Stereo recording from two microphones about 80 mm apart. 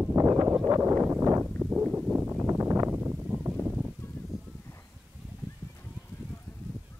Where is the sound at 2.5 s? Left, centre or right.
Right.